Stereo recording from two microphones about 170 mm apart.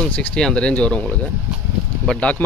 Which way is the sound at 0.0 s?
5° left (ahead or behind).